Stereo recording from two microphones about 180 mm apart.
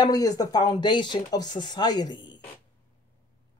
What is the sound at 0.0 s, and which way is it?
Speech, 20° left (ahead or behind).